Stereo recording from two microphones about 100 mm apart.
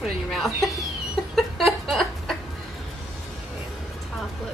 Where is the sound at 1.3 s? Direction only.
Centre (ahead or behind).